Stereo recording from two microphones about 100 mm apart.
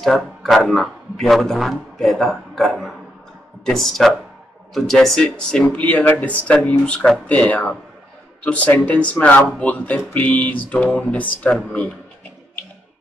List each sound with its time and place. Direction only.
0.0 s a man's voice: centre (ahead or behind)